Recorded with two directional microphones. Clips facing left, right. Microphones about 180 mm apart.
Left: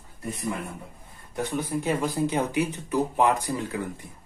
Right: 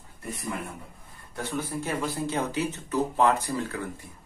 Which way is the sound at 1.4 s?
15° left (ahead or behind).